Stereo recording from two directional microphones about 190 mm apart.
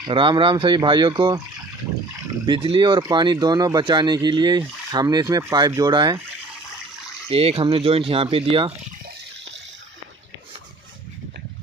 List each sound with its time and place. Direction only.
0.0 s speech: 25° right (ahead or behind)
2.4 s speech: 25° right (ahead or behind)
7.2 s speech: 30° right (ahead or behind)